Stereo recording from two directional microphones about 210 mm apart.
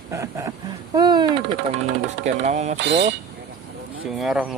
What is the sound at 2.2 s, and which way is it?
Speech, 35° right (ahead or behind).